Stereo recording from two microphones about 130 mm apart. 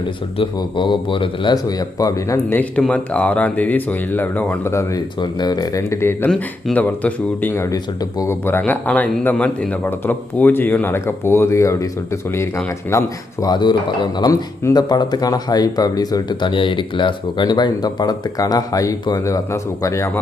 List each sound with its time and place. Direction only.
0.4 s speech: 40° left (ahead or behind)
2.8 s a man's voice: 10° left (ahead or behind)
5.2 s a man's voice: 30° left (ahead or behind); by 7.6 s 15° left (ahead or behind)
7.7 s speech: 25° left (ahead or behind)
8.5 s a man's voice: 15° left (ahead or behind)
13.5 s speech: 35° left (ahead or behind)